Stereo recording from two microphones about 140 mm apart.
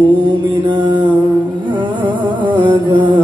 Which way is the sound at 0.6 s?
35° right (ahead or behind).